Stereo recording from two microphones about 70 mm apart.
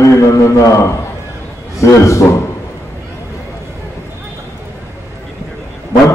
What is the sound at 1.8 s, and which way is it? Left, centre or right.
Speech, left.